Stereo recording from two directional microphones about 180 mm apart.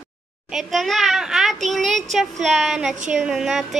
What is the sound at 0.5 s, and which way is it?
A child's voice, centre (ahead or behind).